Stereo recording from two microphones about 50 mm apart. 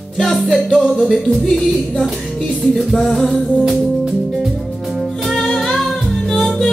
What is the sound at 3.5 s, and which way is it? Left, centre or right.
Music, centre.